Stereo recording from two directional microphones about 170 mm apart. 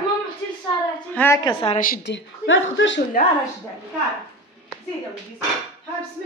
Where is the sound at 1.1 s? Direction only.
10° left (ahead or behind).